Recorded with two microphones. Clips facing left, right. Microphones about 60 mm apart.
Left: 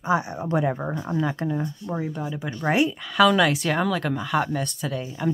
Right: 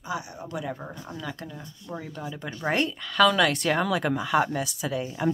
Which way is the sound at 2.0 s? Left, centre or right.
Centre.